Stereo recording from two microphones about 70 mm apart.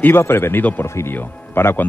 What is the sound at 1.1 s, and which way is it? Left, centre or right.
Speech, left.